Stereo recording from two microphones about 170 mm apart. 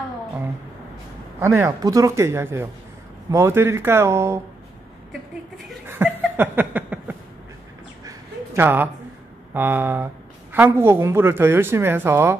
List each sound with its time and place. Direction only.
1.4 s a woman's voice: 15° right (ahead or behind)
5.9 s a sound: 10° right (ahead or behind)
9.5 s a woman's voice: 10° right (ahead or behind)